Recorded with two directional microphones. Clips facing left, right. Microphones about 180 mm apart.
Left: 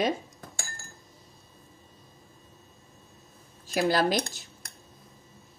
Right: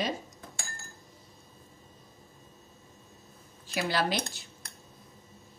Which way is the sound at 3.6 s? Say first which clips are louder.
Left 5 dB; 45° left (ahead or behind).